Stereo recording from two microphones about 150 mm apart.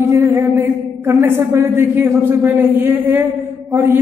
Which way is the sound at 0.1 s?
20° right (ahead or behind).